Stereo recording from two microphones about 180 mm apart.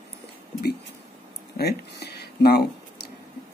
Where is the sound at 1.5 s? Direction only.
65° left (ahead or behind).